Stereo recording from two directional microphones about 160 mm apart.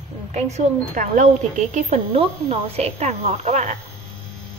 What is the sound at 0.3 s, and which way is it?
A woman's voice, 50° right (ahead or behind).